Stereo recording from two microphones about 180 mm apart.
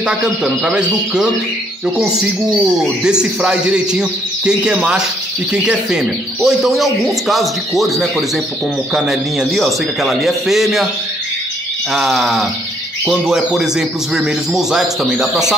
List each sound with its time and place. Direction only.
0.0 s speech: 5° right (ahead or behind)
8.9 s speech: centre (ahead or behind)
11.9 s speech: centre (ahead or behind)